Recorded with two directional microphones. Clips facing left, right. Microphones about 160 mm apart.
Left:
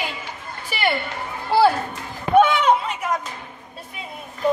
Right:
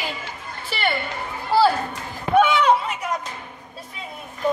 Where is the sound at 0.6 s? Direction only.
10° left (ahead or behind).